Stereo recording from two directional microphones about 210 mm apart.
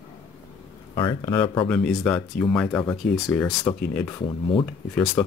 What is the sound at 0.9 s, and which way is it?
Speech, 20° left (ahead or behind).